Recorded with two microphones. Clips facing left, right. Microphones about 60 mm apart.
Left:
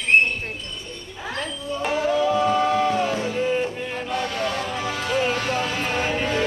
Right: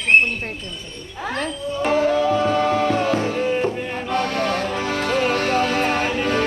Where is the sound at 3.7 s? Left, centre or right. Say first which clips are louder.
Right 3 dB; centre.